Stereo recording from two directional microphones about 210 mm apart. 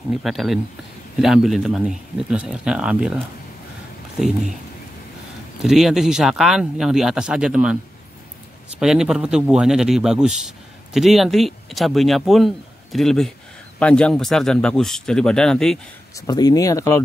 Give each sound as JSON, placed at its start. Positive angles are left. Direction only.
{"t": 0.1, "sound": "a man's voice", "side_deg": 0}
{"t": 5.6, "sound": "a man's voice", "side_deg": 0}
{"t": 8.7, "sound": "a man's voice", "side_deg": -5}
{"t": 16.2, "sound": "speech", "side_deg": 20}